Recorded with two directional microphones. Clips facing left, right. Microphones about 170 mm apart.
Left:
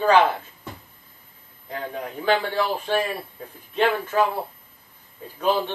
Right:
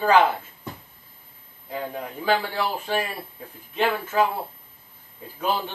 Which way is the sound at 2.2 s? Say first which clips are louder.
Left 2 dB; 5° right (ahead or behind).